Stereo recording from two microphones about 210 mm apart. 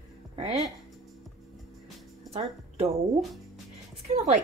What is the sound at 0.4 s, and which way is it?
Speech, 30° right (ahead or behind).